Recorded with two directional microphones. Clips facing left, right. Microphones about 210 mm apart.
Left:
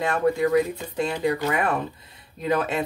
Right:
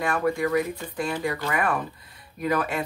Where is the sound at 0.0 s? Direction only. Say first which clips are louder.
Left 3 dB; 20° left (ahead or behind).